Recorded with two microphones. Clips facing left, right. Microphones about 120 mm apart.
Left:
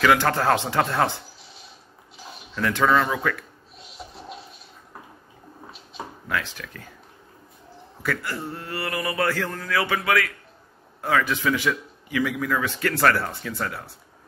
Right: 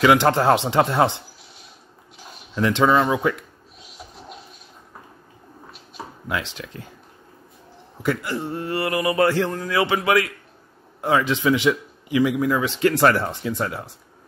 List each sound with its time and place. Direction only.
0.0 s a man's voice: 20° right (ahead or behind)
2.5 s a man's voice: 20° right (ahead or behind)
6.2 s a man's voice: 20° right (ahead or behind)
8.0 s a man's voice: 20° right (ahead or behind)